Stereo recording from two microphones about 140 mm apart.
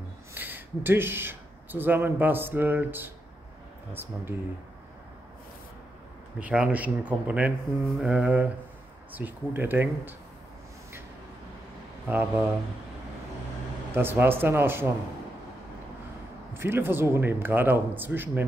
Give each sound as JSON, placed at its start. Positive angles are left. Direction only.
{"t": 0.3, "sound": "a man's voice", "side_deg": -15}
{"t": 6.4, "sound": "a man's voice", "side_deg": -10}
{"t": 12.1, "sound": "a man's voice", "side_deg": -15}
{"t": 13.9, "sound": "a man's voice", "side_deg": -15}
{"t": 16.5, "sound": "a man's voice", "side_deg": -15}